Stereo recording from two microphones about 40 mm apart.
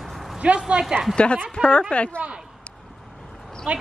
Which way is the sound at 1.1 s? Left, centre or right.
Left.